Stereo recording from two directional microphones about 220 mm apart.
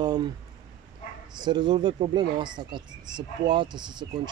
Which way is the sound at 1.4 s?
20° right (ahead or behind).